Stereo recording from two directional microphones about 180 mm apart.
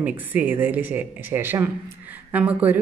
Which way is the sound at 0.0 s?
10° right (ahead or behind).